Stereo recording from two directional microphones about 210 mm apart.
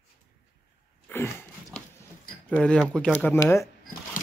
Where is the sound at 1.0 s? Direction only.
10° left (ahead or behind).